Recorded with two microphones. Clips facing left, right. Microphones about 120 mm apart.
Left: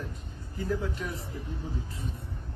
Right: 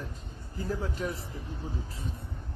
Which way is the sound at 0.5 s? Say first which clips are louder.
Left 2 dB; 35° right (ahead or behind).